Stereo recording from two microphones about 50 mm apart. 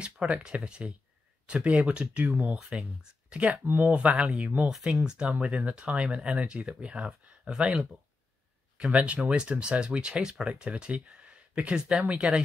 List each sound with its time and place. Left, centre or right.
0.0 s speech: centre
3.6 s speech: right
3.9 s speech: right
8.9 s speech: right